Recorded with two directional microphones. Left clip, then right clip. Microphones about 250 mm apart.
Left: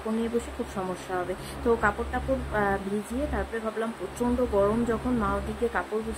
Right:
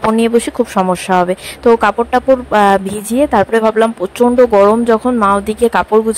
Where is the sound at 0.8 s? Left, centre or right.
Right.